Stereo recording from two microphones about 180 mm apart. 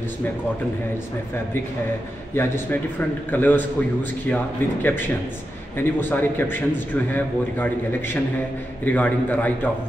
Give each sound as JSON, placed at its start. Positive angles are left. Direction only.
{"t": 2.3, "sound": "speech", "side_deg": 15}